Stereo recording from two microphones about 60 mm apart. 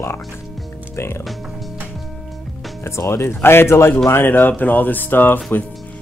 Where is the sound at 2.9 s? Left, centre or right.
Left.